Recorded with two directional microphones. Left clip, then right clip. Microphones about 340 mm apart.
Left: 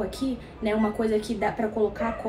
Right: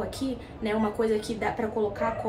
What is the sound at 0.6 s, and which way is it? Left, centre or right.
Speech, centre.